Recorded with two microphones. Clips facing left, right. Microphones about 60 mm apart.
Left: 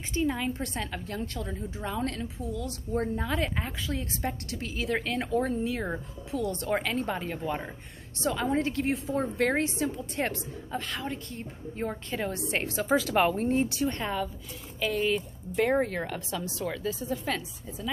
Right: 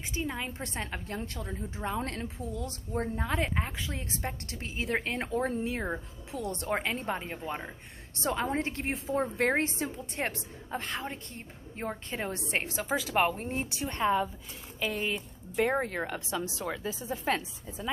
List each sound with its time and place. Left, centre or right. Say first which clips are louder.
0.2 s speech: left 7 dB; centre
0.5 s a woman's voice: left 4 dB; right
1.9 s speech: left 2 dB; right
3.0 s a woman's voice: left 1 dB; centre
8.2 s a woman's voice: left 3 dB; right
12.5 s a woman's voice: left 5 dB; centre